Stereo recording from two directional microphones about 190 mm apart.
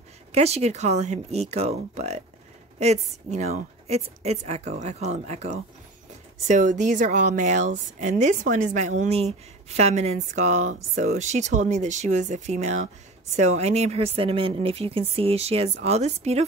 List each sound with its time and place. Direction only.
0.3 s speech: 35° right (ahead or behind)